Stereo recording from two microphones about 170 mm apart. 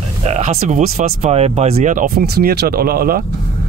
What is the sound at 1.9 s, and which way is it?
Speech, 55° right (ahead or behind).